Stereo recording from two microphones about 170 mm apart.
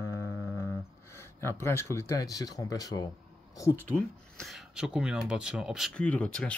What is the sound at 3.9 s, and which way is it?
Speech, centre (ahead or behind).